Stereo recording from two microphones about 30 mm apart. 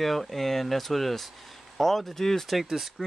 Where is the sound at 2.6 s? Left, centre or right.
Centre.